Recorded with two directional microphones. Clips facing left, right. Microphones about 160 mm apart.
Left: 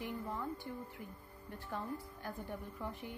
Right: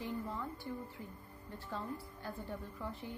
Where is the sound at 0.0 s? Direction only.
15° left (ahead or behind).